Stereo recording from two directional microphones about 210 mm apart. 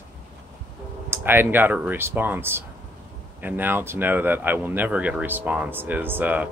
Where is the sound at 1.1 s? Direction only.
10° right (ahead or behind).